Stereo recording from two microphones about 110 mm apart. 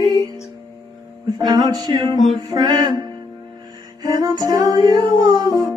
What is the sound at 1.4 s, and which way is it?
Music, 35° right (ahead or behind).